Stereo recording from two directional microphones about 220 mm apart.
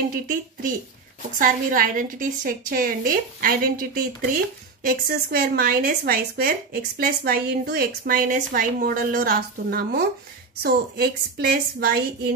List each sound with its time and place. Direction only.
0.1 s a woman's voice: 40° right (ahead or behind)